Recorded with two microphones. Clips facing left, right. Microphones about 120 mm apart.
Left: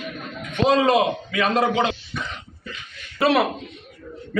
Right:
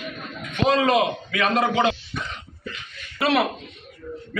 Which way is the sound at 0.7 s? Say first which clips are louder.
Left 2 dB; 30° left (ahead or behind).